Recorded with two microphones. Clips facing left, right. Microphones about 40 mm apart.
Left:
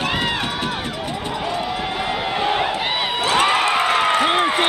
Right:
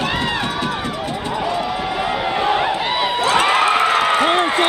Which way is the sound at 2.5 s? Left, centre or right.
Centre.